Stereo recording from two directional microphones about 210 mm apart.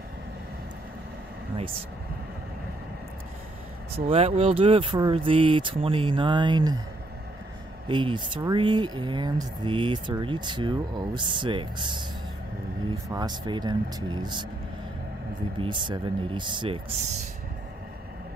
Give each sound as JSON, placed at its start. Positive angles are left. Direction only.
{"t": 3.9, "sound": "speech", "side_deg": -30}
{"t": 7.9, "sound": "speech", "side_deg": -25}
{"t": 13.1, "sound": "speech", "side_deg": -20}
{"t": 15.6, "sound": "speech", "side_deg": -20}